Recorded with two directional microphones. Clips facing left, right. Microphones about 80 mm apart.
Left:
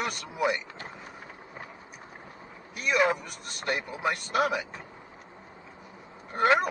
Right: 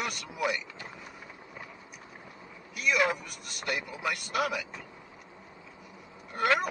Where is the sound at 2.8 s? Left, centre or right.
Left.